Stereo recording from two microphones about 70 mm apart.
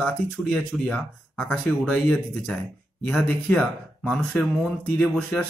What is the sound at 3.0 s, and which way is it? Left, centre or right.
Speech, centre.